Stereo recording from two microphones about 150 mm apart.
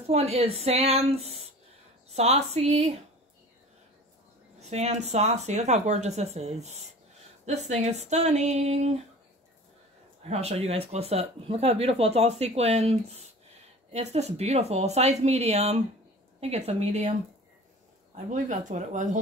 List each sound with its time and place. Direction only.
0.0 s speech: 45° right (ahead or behind)
4.6 s speech: 50° right (ahead or behind)
10.2 s speech: 45° right (ahead or behind)
13.9 s speech: 45° right (ahead or behind)
18.1 s speech: 55° right (ahead or behind)